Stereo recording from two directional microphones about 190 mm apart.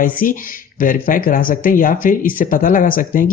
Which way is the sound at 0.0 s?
45° left (ahead or behind).